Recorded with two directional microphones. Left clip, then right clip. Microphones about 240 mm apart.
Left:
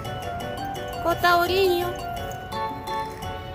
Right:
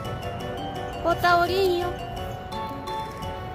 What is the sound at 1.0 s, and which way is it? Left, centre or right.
Music, centre.